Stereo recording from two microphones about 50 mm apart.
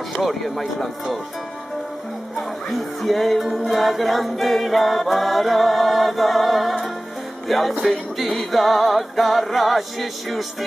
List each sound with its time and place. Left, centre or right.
0.2 s a capella: centre
2.3 s music: centre
3.5 s a capella: centre
7.4 s music: centre
8.2 s a capella: centre